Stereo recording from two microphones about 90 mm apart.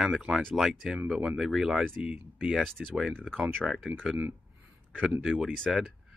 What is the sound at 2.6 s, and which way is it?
Speech, 5° left (ahead or behind).